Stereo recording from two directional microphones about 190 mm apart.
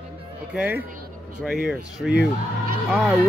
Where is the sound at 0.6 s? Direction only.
10° right (ahead or behind).